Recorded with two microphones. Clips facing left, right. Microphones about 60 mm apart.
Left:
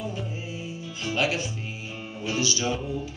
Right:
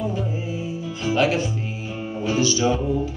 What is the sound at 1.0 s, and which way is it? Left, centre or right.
Music, centre.